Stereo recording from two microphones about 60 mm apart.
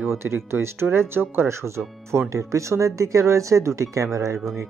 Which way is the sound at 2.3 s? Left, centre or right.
Right.